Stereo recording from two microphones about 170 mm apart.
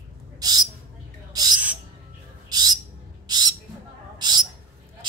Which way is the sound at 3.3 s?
25° right (ahead or behind).